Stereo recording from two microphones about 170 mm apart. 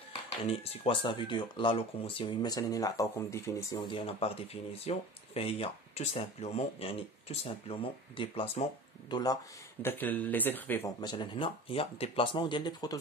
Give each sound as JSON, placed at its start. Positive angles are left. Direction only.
{"t": 0.5, "sound": "speech", "side_deg": 30}
{"t": 3.8, "sound": "speech", "side_deg": 35}
{"t": 11.0, "sound": "speech", "side_deg": 25}